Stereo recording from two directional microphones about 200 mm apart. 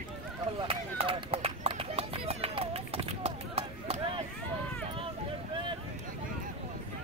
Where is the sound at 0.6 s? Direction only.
25° right (ahead or behind).